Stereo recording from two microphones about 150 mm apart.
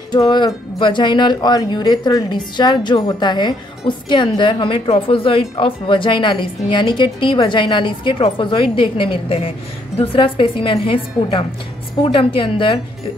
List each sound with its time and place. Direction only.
0.1 s speech: 30° left (ahead or behind)